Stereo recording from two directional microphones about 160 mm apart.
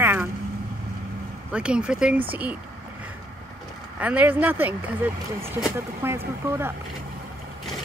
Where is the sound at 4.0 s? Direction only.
10° right (ahead or behind).